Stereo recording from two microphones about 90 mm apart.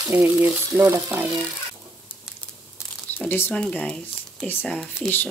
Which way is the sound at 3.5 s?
10° left (ahead or behind).